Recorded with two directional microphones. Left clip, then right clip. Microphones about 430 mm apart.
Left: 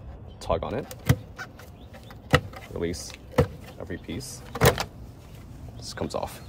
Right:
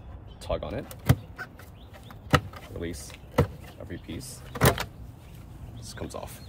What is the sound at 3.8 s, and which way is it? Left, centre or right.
Speech, centre.